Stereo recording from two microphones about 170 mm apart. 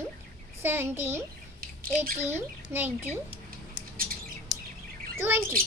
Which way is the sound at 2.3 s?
10° right (ahead or behind).